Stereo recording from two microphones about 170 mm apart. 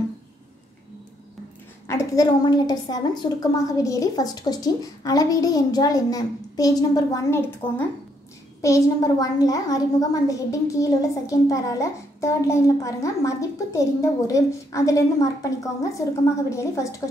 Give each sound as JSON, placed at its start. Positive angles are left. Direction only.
{"t": 1.9, "sound": "a woman's voice", "side_deg": 20}